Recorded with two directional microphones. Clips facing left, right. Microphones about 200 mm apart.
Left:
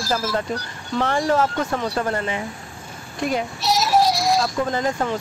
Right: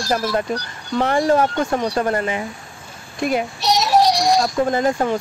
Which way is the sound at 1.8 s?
15° right (ahead or behind).